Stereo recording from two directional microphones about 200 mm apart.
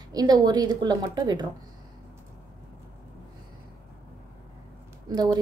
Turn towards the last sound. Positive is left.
turn(degrees=-20)  # may be behind; listen again after turning